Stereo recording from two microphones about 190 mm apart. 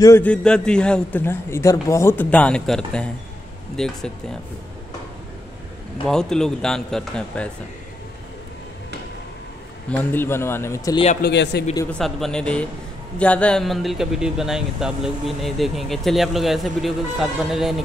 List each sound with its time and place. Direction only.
0.0 s a man's voice: 10° left (ahead or behind)
6.0 s speech: 5° left (ahead or behind)
9.8 s a man's voice: 10° left (ahead or behind)
11.2 s speech: 60° left (ahead or behind)
11.9 s speech: centre (ahead or behind)